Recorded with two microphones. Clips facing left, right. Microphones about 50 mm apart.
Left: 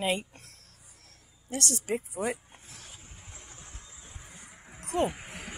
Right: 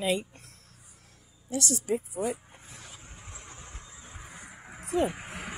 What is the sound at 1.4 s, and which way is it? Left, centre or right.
Speech, left.